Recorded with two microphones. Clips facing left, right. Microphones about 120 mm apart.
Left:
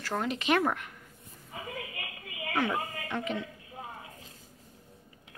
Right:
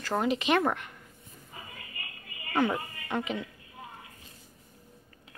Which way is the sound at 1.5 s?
90° left.